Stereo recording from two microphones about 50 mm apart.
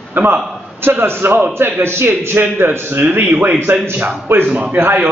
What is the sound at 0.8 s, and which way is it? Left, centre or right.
A man's voice, right.